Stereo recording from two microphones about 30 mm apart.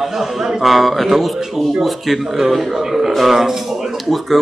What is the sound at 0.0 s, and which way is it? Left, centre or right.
Speech, centre.